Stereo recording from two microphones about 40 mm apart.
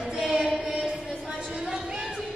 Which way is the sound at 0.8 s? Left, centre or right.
Centre.